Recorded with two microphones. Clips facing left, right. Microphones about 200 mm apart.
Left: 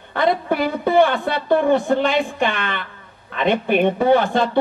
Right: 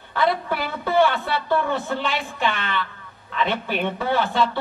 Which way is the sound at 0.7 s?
15° left (ahead or behind).